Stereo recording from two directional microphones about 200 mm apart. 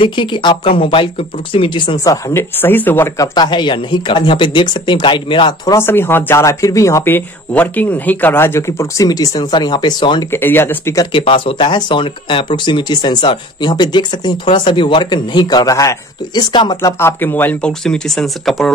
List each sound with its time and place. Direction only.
0.0 s speech: 25° left (ahead or behind)
5.8 s speech: 10° left (ahead or behind)
10.4 s speech: 10° left (ahead or behind)